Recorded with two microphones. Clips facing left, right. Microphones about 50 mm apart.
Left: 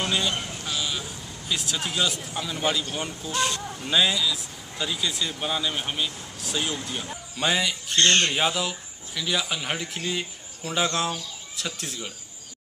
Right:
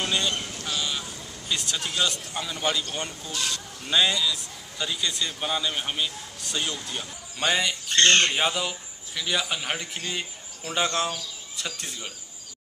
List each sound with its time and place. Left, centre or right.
0.3 s sheep: centre
1.5 s a man's voice: centre
3.3 s speech: left
3.9 s a man's voice: centre